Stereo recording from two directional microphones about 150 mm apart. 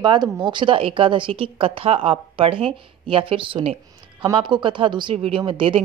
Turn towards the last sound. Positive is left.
turn(degrees=-35)  # may be behind; listen again after turning